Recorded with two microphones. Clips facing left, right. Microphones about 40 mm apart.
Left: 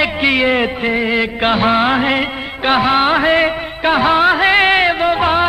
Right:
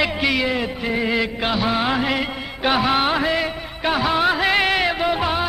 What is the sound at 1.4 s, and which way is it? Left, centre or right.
Music, left.